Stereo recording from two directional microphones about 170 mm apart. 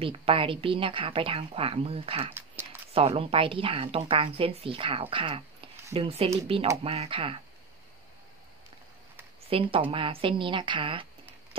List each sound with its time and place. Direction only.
0.0 s a woman's voice: 30° right (ahead or behind)
9.5 s a woman's voice: 30° right (ahead or behind)